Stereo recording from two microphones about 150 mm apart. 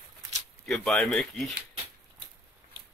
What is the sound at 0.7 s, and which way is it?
Speech, centre (ahead or behind).